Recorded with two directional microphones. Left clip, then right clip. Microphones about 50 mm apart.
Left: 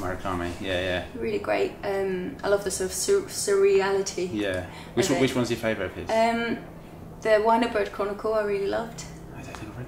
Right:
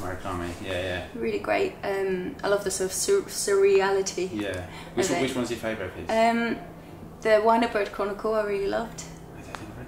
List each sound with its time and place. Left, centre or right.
0.0 s speech: right
1.2 s speech: centre
5.2 s speech: right
6.0 s speech: centre